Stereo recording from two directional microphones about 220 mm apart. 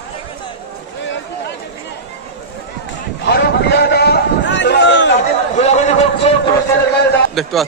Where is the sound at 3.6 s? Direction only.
50° left (ahead or behind).